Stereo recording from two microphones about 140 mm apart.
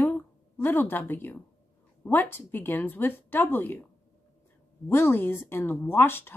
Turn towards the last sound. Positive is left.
turn(degrees=15)  # may be behind; listen again after turning